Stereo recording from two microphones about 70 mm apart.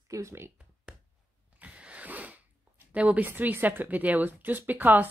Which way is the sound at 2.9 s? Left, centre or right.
Centre.